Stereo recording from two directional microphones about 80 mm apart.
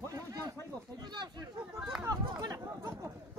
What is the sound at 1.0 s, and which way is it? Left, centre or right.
Speech, right.